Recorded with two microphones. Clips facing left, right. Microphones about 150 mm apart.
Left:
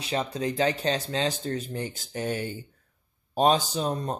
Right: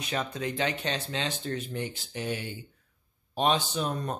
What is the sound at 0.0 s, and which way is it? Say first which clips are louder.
Speech: left 3 dB; 30° left (ahead or behind).